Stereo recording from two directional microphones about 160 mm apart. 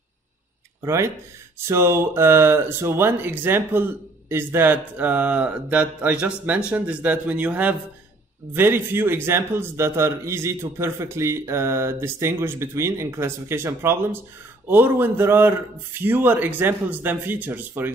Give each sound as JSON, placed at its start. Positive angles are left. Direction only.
{"t": 0.8, "sound": "speech", "side_deg": -20}